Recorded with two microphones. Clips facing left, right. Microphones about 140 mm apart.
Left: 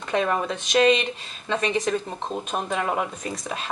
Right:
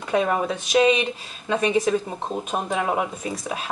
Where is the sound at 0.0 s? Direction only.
10° right (ahead or behind).